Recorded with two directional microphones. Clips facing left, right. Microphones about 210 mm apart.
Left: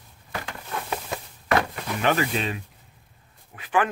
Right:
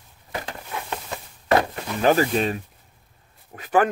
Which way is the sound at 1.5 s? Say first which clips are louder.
Right 3 dB; 35° right (ahead or behind).